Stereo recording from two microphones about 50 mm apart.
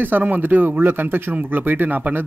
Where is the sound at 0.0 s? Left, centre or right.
Right.